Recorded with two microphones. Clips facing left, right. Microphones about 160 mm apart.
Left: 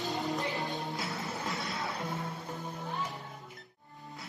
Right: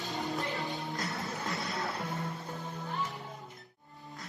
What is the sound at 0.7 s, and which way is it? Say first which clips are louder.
Music: even; centre (ahead or behind).